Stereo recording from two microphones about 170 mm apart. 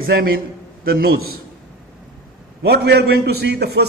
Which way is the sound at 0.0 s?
65° right (ahead or behind).